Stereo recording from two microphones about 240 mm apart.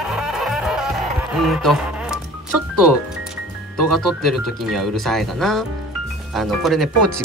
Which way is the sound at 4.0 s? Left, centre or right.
Centre.